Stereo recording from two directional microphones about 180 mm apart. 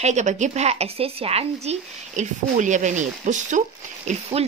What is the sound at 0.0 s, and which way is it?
Speech, 40° right (ahead or behind).